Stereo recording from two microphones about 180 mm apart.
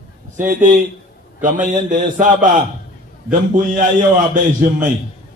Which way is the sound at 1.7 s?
45° right (ahead or behind).